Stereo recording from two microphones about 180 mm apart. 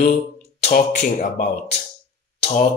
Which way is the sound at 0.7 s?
50° left (ahead or behind).